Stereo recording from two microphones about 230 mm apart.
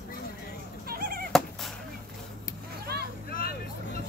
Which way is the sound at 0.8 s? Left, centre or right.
Right.